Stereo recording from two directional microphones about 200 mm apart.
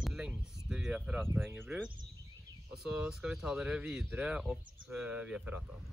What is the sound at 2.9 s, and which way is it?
Speech, 5° right (ahead or behind).